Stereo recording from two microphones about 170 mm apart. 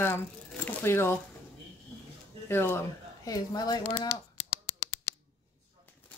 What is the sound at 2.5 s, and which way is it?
Speech, 15° left (ahead or behind).